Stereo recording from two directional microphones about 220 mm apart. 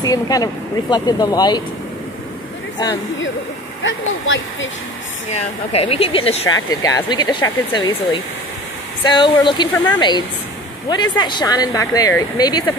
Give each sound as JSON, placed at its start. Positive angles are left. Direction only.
{"t": 0.0, "sound": "speech", "side_deg": 15}
{"t": 3.8, "sound": "speech", "side_deg": 60}
{"t": 5.3, "sound": "speech", "side_deg": 25}